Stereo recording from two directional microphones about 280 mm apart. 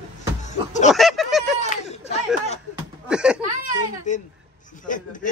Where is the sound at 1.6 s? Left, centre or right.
Left.